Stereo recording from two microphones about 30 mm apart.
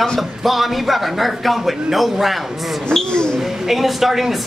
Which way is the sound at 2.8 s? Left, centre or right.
Left.